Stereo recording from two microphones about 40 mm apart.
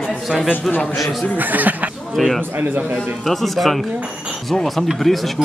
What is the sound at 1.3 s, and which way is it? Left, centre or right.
Speech, right.